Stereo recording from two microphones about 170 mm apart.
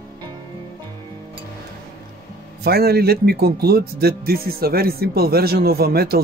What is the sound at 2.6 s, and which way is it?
Speech, 65° right (ahead or behind).